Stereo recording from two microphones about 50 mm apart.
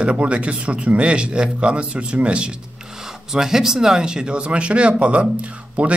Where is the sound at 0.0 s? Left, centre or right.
Right.